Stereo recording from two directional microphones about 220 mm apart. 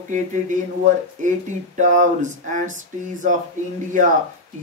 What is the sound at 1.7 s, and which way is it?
Speech, 35° right (ahead or behind).